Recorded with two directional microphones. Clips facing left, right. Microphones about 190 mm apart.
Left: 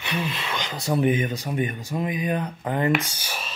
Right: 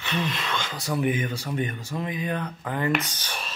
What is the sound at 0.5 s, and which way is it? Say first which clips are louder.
Speech: left 6 dB; 20° left (ahead or behind).